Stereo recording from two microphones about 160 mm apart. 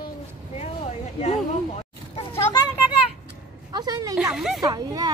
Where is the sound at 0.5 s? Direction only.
40° left (ahead or behind).